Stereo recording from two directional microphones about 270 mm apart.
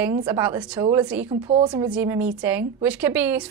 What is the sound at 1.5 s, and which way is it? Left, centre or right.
Speech, centre.